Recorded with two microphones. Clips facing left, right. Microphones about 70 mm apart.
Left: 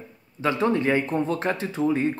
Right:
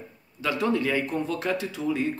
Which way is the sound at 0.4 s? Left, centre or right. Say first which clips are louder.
Left 3 dB; left.